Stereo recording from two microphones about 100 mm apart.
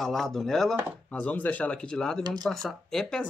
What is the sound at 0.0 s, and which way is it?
Speech, 5° left (ahead or behind).